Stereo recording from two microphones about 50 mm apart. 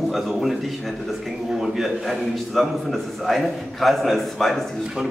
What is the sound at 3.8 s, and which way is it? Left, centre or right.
Speech, centre.